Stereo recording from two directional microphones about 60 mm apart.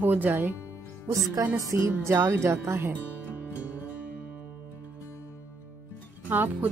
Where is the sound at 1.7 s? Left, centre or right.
Right.